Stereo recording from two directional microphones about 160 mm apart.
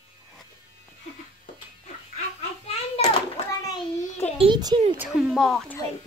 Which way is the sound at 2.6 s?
40° left (ahead or behind).